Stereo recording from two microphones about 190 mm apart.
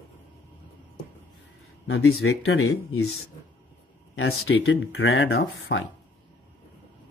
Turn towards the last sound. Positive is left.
turn(degrees=85)